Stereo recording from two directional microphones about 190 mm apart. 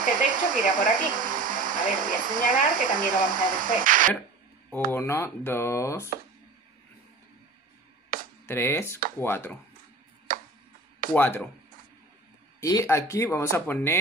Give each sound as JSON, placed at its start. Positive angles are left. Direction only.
{"t": 0.0, "sound": "speech", "side_deg": -45}
{"t": 4.9, "sound": "speech", "side_deg": 15}
{"t": 8.1, "sound": "a sound", "side_deg": -50}
{"t": 8.5, "sound": "speech", "side_deg": 10}
{"t": 10.3, "sound": "a sound", "side_deg": -45}
{"t": 11.1, "sound": "speech", "side_deg": 10}
{"t": 12.5, "sound": "speech", "side_deg": 15}